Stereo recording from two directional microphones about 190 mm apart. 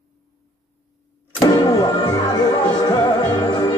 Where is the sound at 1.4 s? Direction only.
20° left (ahead or behind).